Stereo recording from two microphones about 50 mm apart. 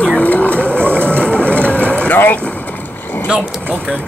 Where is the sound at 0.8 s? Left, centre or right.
Right.